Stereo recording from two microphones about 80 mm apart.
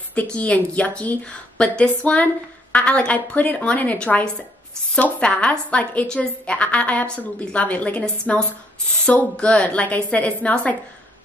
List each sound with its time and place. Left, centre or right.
0.1 s a woman's voice: centre